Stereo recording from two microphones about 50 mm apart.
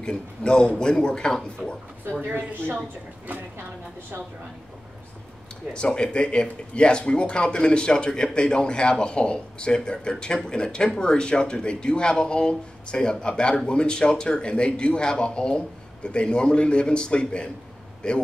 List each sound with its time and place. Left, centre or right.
0.0 s speech: centre
2.2 s a woman's voice: right
5.7 s speech: centre